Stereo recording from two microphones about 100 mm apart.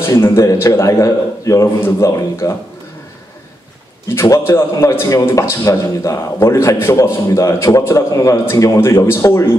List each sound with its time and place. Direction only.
0.0 s a man's voice: 25° left (ahead or behind)
4.1 s a man's voice: 25° left (ahead or behind)